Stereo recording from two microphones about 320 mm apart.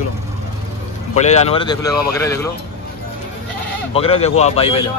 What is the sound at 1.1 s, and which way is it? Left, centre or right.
Speech, left.